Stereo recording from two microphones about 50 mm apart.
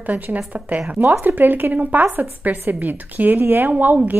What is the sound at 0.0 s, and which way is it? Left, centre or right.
Speech, right.